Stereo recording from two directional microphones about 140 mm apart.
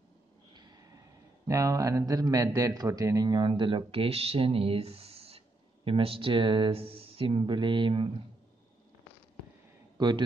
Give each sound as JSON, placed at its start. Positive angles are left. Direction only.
{"t": 0.6, "sound": "a sound", "side_deg": -25}
{"t": 1.5, "sound": "a man's voice", "side_deg": -25}
{"t": 9.9, "sound": "a man's voice", "side_deg": -30}